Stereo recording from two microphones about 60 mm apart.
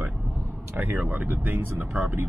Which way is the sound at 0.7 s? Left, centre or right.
Right.